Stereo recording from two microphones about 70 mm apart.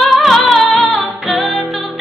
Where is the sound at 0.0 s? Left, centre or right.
Centre.